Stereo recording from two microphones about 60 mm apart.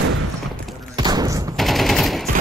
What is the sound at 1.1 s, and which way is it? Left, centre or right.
Fusillade, right.